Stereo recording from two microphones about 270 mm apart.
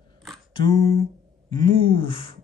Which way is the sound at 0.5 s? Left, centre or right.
Centre.